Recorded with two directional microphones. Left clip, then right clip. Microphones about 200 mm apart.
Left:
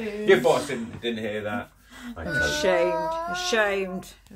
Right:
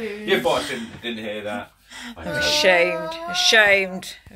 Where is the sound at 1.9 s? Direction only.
Centre (ahead or behind).